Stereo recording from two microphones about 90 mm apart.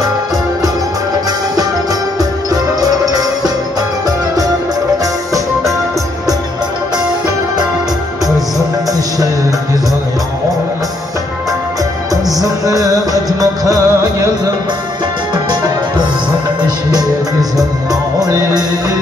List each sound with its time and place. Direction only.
2.1 s music: 45° right (ahead or behind)
12.1 s music: 40° right (ahead or behind)
16.9 s music: 45° right (ahead or behind)